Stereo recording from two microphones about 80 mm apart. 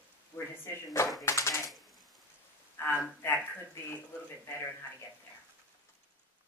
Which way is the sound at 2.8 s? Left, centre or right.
Left.